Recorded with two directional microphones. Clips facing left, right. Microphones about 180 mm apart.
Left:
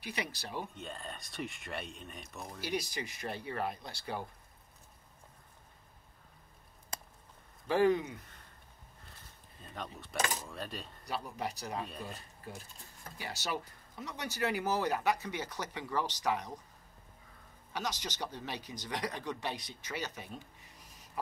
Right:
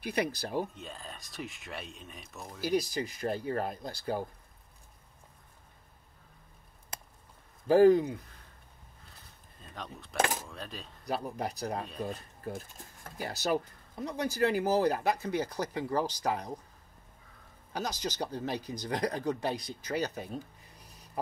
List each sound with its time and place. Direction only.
0.0 s speech: 45° right (ahead or behind)
0.7 s speech: centre (ahead or behind)
2.7 s speech: 40° right (ahead or behind)
7.6 s speech: 40° right (ahead or behind)
9.8 s speech: centre (ahead or behind)
10.1 s speech: 55° right (ahead or behind)
10.5 s speech: centre (ahead or behind)
11.2 s speech: 40° right (ahead or behind)
17.7 s speech: 35° right (ahead or behind)